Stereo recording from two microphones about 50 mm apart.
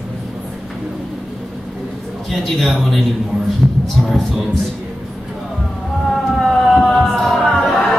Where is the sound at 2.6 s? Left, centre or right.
Centre.